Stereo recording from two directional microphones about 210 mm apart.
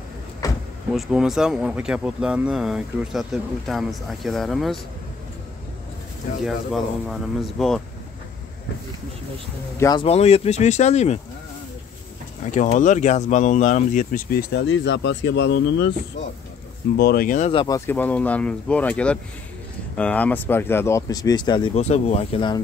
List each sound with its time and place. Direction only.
0.4 s a sound: 15° left (ahead or behind)
0.9 s speech: centre (ahead or behind)
6.4 s speech: centre (ahead or behind)
9.8 s speech: 15° left (ahead or behind)
10.0 s speech: 30° left (ahead or behind)
12.4 s speech: 35° left (ahead or behind); by 15.9 s 55° left (ahead or behind)
16.9 s speech: 45° left (ahead or behind)
17.5 s speech: 20° left (ahead or behind)